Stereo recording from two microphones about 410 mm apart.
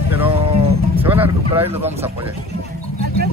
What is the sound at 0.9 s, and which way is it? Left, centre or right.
Speech, centre.